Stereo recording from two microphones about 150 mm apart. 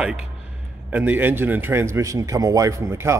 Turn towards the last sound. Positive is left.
turn(degrees=-20)  # may be behind; listen again after turning